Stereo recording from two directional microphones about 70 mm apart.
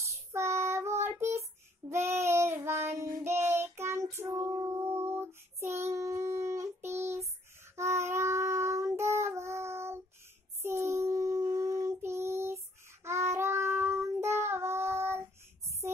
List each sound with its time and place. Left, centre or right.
0.3 s child singing: right
15.8 s music: right